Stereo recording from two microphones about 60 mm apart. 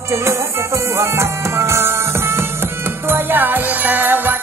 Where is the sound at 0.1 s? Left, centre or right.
Right.